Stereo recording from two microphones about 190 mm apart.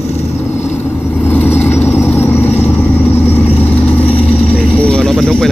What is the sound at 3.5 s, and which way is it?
Vehicle, 30° left (ahead or behind).